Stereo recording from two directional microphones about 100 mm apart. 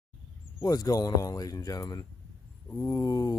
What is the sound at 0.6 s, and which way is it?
Speech, 35° left (ahead or behind).